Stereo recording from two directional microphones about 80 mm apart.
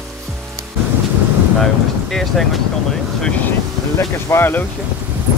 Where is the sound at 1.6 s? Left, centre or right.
Centre.